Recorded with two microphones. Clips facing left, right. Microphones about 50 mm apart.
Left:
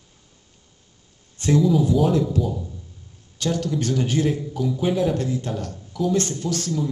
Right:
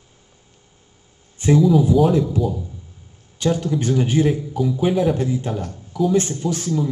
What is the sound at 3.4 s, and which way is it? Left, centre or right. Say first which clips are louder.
A man's voice: right 4 dB; centre.